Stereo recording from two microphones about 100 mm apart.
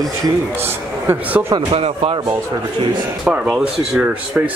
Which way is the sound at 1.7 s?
75° right (ahead or behind).